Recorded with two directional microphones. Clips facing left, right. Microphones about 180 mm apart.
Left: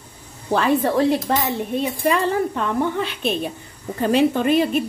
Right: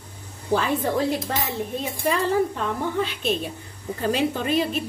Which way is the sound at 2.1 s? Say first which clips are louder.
Left 1 dB; 65° left (ahead or behind).